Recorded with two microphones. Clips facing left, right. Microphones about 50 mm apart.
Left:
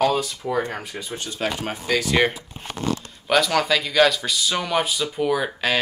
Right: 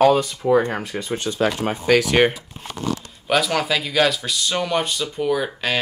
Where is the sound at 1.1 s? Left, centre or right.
Right.